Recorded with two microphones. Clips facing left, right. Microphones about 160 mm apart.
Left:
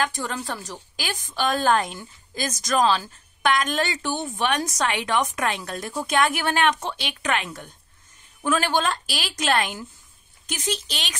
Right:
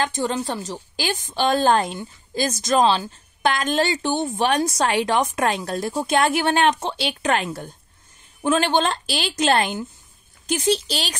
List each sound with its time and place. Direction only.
0.0 s a woman's voice: 25° right (ahead or behind)